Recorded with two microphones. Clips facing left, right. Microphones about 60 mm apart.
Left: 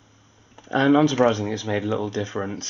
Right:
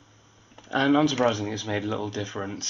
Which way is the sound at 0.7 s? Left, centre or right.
Centre.